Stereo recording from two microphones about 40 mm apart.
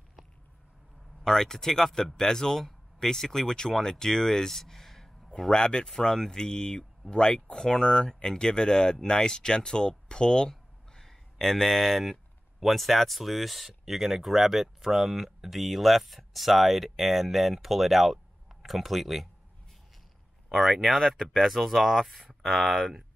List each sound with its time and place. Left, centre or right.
1.2 s speech: centre
5.4 s speech: centre
10.5 s a sound: centre
12.5 s speech: centre
20.5 s speech: centre